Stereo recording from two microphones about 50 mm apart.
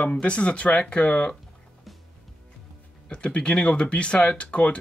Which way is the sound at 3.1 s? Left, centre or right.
Left.